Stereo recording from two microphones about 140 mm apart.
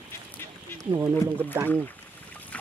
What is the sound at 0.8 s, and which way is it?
Speech, 25° right (ahead or behind).